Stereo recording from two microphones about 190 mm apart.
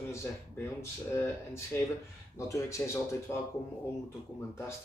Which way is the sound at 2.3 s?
15° left (ahead or behind).